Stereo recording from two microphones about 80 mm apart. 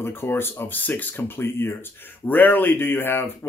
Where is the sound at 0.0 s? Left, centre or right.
Left.